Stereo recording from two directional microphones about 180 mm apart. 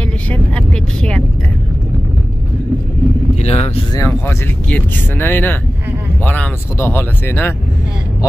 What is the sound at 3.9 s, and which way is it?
Speech, 15° left (ahead or behind).